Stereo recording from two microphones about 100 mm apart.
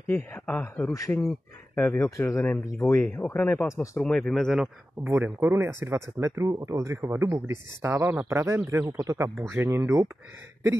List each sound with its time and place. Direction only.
0.1 s a man's voice: 20° left (ahead or behind)
2.0 s a man's voice: 30° left (ahead or behind); by 3.6 s 10° left (ahead or behind)
3.6 s a man's voice: 30° left (ahead or behind)
4.0 s speech: 5° left (ahead or behind)
5.0 s speech: 20° right (ahead or behind)